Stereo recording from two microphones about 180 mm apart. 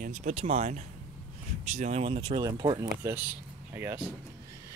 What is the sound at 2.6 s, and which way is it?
Speech, 20° right (ahead or behind).